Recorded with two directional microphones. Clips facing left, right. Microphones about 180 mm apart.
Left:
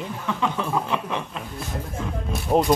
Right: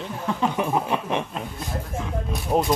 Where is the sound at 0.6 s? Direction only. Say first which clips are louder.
Right 2 dB; 15° right (ahead or behind).